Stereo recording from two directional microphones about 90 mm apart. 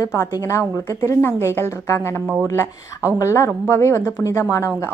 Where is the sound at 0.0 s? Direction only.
30° left (ahead or behind).